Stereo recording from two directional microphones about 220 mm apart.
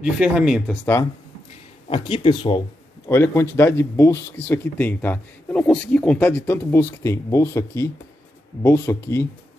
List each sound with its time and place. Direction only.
0.0 s speech: 5° right (ahead or behind)
1.9 s speech: 25° left (ahead or behind)
3.1 s speech: 10° left (ahead or behind)